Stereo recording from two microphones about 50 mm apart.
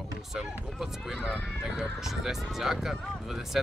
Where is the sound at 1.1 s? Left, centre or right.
Left.